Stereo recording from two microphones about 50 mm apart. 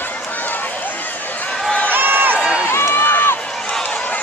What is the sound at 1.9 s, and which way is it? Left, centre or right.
Crowd, right.